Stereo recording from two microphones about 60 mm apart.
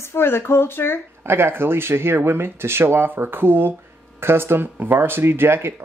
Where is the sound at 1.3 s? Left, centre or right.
Right.